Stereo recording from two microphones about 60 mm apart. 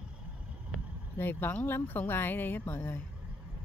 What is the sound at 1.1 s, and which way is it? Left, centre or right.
Speech, left.